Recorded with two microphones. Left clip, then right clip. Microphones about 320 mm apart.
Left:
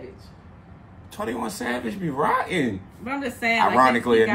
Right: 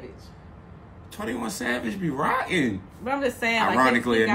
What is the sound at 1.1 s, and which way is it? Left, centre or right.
Speech, centre.